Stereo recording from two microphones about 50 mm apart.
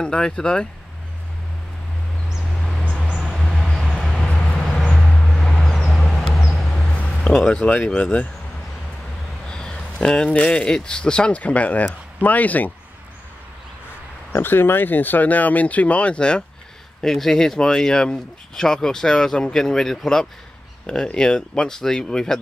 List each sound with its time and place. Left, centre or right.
0.0 s speech: centre
3.3 s a sound: centre
4.0 s vehicle: centre
4.3 s vehicle: left
4.9 s vehicle: centre
6.7 s a sound: centre
7.2 s speech: centre
9.5 s a sound: centre
10.4 s speech: centre; by 12.7 s left
14.3 s speech: left
17.0 s speech: centre